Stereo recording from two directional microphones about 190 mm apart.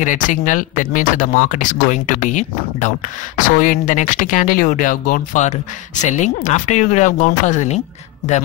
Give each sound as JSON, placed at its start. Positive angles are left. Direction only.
{"t": 0.0, "sound": "speech", "side_deg": 40}